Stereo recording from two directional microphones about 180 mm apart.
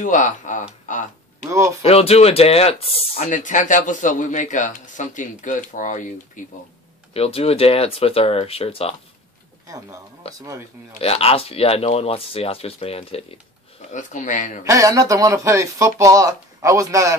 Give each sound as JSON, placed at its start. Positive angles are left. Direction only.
{"t": 0.0, "sound": "speech", "side_deg": 45}
{"t": 0.9, "sound": "a sound", "side_deg": 45}
{"t": 1.5, "sound": "speech", "side_deg": -15}
{"t": 1.8, "sound": "speech", "side_deg": 35}
{"t": 7.2, "sound": "speech", "side_deg": 35}
{"t": 9.7, "sound": "speech", "side_deg": -20}
{"t": 11.0, "sound": "speech", "side_deg": 35}
{"t": 13.9, "sound": "speech", "side_deg": 45}
{"t": 14.6, "sound": "speech", "side_deg": -15}